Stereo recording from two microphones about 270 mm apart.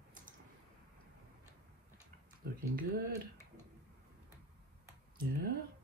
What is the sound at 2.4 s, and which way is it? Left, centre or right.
Speech, right.